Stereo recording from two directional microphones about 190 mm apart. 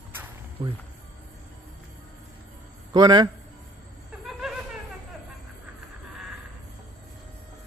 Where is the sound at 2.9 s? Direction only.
20° right (ahead or behind).